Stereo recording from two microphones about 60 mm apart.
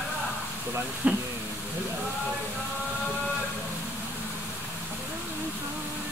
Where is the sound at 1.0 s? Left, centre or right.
Right.